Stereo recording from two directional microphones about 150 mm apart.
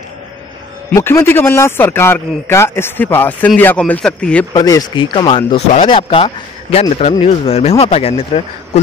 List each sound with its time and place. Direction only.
0.9 s speech: 15° left (ahead or behind)
4.6 s a man's voice: 25° left (ahead or behind); by 8.3 s 40° left (ahead or behind)